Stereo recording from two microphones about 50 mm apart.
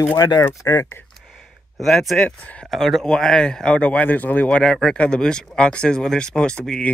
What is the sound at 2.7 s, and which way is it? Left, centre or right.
Speech, centre.